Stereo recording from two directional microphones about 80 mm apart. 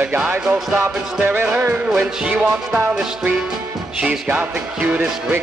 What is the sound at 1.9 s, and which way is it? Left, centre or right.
Speech, centre.